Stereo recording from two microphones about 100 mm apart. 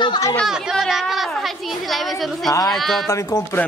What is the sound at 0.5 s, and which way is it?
Speech, 5° right (ahead or behind).